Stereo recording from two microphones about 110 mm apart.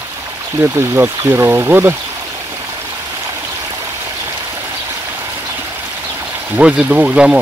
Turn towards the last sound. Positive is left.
turn(degrees=-10)  # may be behind; listen again after turning